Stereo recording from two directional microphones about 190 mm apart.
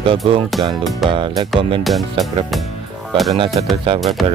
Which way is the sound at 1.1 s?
25° right (ahead or behind).